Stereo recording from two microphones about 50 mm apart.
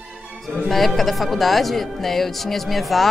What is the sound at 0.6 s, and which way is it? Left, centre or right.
Speech, centre.